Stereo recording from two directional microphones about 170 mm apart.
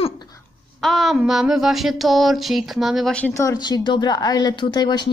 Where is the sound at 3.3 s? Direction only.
20° left (ahead or behind).